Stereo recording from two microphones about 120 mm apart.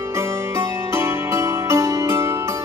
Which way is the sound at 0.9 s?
20° right (ahead or behind).